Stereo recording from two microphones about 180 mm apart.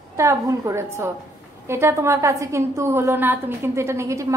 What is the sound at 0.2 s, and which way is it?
A woman's voice, 15° right (ahead or behind).